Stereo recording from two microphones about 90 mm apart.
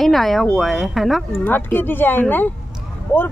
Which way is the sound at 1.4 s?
25° left (ahead or behind).